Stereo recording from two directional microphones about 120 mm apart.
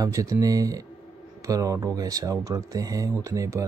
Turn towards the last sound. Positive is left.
turn(degrees=-25)  # may be behind; listen again after turning